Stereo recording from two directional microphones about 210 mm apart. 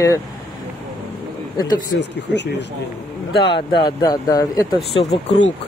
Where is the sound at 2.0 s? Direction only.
55° left (ahead or behind).